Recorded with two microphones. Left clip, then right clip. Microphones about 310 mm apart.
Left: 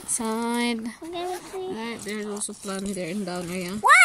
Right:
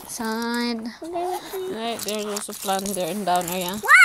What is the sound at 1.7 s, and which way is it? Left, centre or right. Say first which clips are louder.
Speech: right 5 dB; centre.